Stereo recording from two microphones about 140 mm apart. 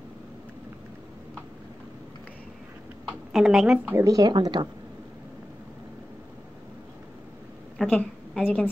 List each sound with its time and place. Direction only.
3.1 s a woman's voice: 5° right (ahead or behind)
3.9 s speech: 25° right (ahead or behind)
7.7 s a sound: 10° left (ahead or behind)